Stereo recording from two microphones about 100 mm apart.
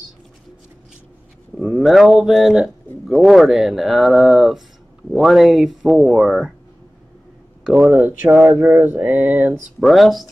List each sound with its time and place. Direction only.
1.6 s speech: centre (ahead or behind)
7.6 s a sound: 10° right (ahead or behind)
9.8 s speech: centre (ahead or behind)